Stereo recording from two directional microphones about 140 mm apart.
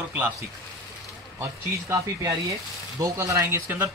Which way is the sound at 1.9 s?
25° right (ahead or behind).